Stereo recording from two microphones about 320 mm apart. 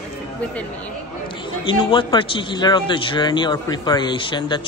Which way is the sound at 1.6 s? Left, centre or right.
Centre.